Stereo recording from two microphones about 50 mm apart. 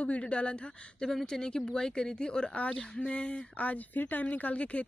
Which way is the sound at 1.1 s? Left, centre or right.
Centre.